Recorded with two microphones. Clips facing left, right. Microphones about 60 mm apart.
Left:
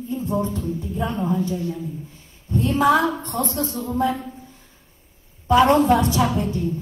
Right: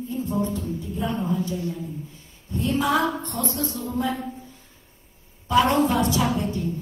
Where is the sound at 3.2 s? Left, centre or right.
Left.